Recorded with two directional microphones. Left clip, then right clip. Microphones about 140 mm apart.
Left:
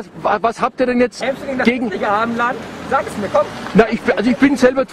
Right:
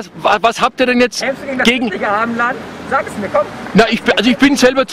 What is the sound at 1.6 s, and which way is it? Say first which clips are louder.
Speech: right 4 dB; 20° right (ahead or behind).